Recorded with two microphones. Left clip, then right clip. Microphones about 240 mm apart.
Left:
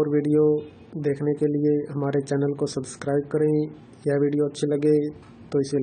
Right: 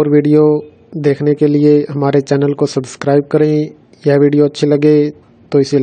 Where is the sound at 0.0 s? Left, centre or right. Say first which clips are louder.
Right 11 dB; right.